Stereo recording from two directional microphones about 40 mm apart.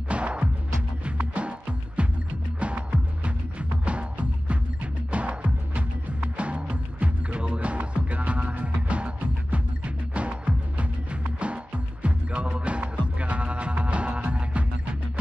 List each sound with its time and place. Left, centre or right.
0.1 s music: right